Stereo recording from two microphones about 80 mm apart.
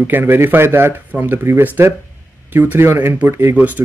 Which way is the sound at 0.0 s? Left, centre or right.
Right.